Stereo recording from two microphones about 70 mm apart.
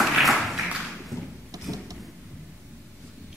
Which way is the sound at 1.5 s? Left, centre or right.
Right.